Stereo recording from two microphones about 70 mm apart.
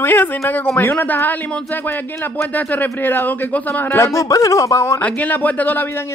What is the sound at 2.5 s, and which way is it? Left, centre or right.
Speech, left.